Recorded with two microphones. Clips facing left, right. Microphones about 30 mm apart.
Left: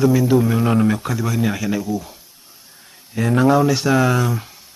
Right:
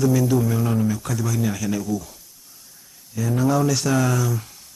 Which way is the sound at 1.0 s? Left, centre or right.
Left.